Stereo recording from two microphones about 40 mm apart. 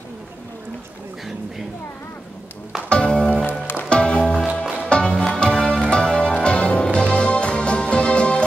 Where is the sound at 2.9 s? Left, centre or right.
Left.